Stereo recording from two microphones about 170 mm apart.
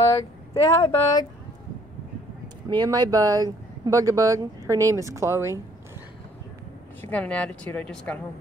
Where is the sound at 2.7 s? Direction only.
25° right (ahead or behind).